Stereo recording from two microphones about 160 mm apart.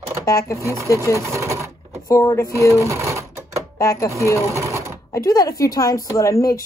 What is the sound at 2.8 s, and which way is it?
Sewing machine, 15° right (ahead or behind).